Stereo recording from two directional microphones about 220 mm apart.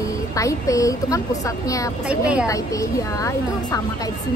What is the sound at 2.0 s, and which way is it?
Speech, 5° right (ahead or behind).